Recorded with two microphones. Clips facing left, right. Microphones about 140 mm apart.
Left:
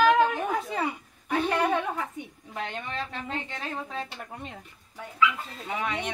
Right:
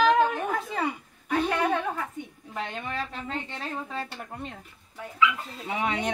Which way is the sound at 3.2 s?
Centre (ahead or behind).